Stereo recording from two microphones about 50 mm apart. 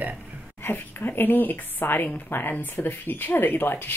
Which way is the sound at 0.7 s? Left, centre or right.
Left.